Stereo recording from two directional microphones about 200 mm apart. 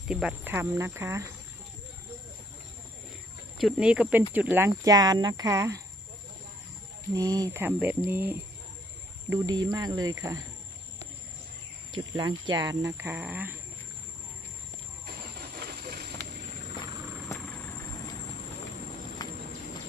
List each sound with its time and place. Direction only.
0.1 s speech: 5° right (ahead or behind)
3.5 s speech: 5° right (ahead or behind)
7.2 s speech: 20° right (ahead or behind)
11.9 s speech: 20° right (ahead or behind)
17.3 s vehicle: 15° left (ahead or behind)